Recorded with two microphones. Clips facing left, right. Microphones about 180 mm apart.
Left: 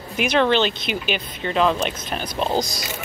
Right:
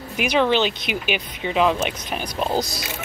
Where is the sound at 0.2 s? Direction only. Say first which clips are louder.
Left 1 dB; 10° right (ahead or behind).